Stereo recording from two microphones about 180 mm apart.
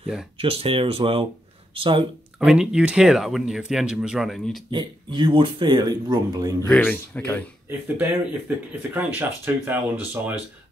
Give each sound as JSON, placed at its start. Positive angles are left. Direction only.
{"t": 0.4, "sound": "speech", "side_deg": -30}
{"t": 2.4, "sound": "speech", "side_deg": -5}
{"t": 4.6, "sound": "speech", "side_deg": -25}
{"t": 6.7, "sound": "speech", "side_deg": 5}
{"t": 7.7, "sound": "speech", "side_deg": -15}